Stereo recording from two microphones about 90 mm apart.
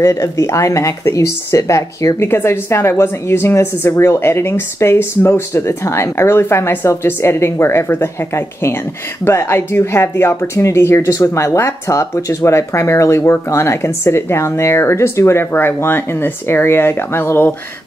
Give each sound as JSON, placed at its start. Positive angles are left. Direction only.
{"t": 0.0, "sound": "speech", "side_deg": 35}